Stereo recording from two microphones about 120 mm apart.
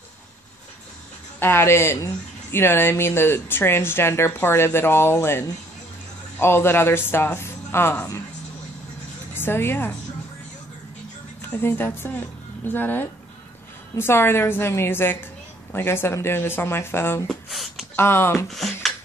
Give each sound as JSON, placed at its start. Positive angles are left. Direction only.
{"t": 1.4, "sound": "speech", "side_deg": 20}
{"t": 9.3, "sound": "speech", "side_deg": 20}
{"t": 11.5, "sound": "speech", "side_deg": 20}
{"t": 17.3, "sound": "a sound", "side_deg": 0}
{"t": 17.9, "sound": "speech", "side_deg": 20}
{"t": 18.5, "sound": "speech", "side_deg": 0}